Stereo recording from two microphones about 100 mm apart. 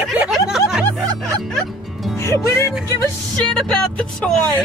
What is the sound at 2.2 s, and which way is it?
Music, 25° left (ahead or behind).